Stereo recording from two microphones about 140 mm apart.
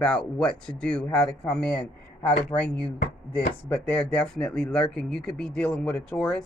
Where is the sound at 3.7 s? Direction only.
10° left (ahead or behind).